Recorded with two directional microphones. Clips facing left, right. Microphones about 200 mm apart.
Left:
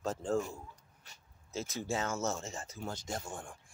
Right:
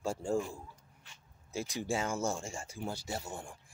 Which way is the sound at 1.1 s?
40° left (ahead or behind).